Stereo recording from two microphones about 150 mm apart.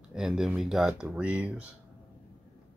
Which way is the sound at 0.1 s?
5° right (ahead or behind).